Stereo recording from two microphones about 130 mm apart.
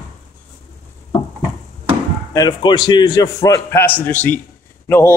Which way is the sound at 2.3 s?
30° left (ahead or behind).